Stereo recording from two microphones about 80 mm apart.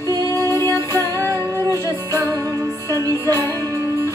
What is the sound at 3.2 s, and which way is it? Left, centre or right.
Music, left.